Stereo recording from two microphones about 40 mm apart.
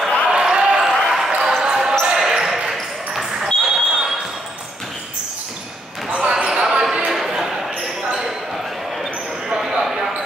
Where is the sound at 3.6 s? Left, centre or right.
Centre.